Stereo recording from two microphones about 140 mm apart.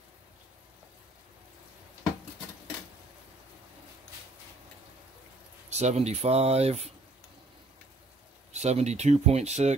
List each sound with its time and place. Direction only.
5.7 s speech: 55° right (ahead or behind)
8.5 s speech: 50° right (ahead or behind)